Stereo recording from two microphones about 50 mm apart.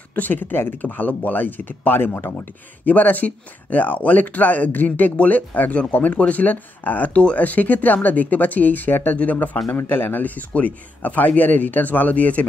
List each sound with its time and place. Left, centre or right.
0.1 s speech: left
6.1 s speech: left